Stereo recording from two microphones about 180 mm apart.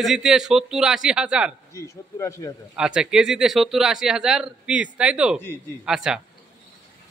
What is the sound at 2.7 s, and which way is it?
Speech, 5° right (ahead or behind).